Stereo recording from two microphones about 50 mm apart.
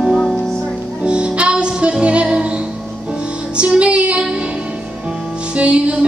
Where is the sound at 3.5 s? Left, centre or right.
Right.